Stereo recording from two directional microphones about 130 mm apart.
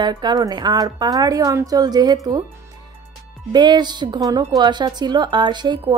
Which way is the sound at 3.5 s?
35° right (ahead or behind).